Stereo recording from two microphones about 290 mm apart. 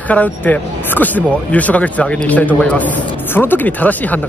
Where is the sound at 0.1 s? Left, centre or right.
Centre.